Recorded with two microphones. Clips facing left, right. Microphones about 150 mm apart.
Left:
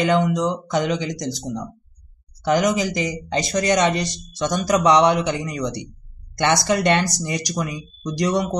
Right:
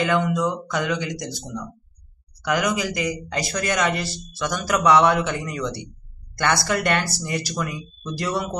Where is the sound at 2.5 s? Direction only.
25° left (ahead or behind).